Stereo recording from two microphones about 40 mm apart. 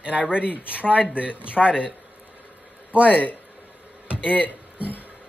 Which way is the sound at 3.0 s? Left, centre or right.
Left.